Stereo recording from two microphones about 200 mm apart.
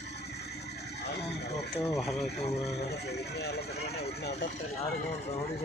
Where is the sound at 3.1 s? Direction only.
55° left (ahead or behind).